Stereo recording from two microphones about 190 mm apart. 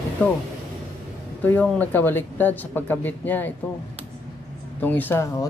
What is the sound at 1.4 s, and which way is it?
Speech, 10° left (ahead or behind).